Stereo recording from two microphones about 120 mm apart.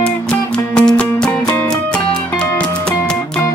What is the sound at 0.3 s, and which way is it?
Music, 10° left (ahead or behind).